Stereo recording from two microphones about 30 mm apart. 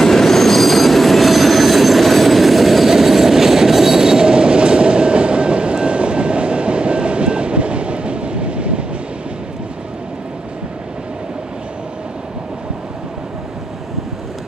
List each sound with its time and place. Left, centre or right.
0.0 s train: centre; by 8.8 s right